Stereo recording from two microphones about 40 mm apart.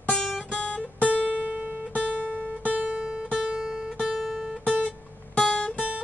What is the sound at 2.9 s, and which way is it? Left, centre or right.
Guitar, centre.